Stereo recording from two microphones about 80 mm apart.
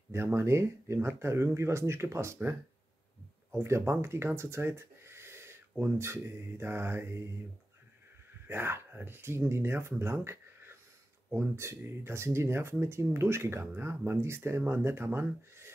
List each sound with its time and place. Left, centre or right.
0.1 s speech: right
3.5 s speech: right
8.5 s speech: right